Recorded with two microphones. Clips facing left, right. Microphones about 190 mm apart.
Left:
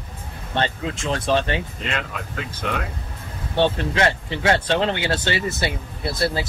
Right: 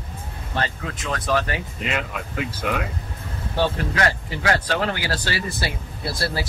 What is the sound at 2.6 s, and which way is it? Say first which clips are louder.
Speech: right 1 dB; 10° right (ahead or behind).